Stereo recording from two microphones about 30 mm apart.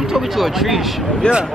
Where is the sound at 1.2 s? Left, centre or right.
Left.